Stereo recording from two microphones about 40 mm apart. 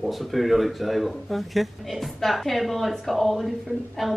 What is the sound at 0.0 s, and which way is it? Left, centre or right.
Speech, centre.